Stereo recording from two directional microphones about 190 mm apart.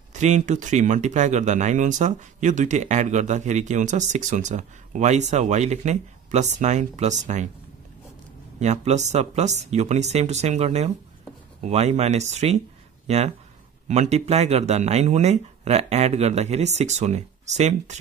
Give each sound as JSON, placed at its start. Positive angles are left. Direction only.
{"t": 0.1, "sound": "speech", "side_deg": -40}
{"t": 8.5, "sound": "speech", "side_deg": -35}